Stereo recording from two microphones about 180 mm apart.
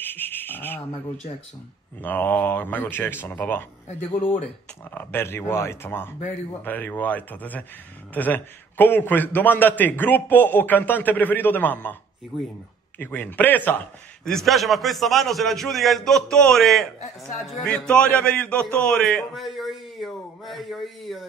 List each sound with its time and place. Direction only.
0.0 s a sound: 10° left (ahead or behind)
2.0 s a man's voice: 10° left (ahead or behind)
4.9 s a man's voice: 10° left (ahead or behind)
13.0 s a man's voice: 10° left (ahead or behind)